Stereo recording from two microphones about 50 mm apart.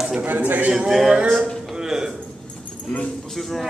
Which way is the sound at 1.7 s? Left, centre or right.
Centre.